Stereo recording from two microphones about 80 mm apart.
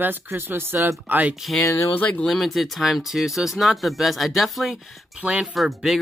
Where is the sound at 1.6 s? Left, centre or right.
Left.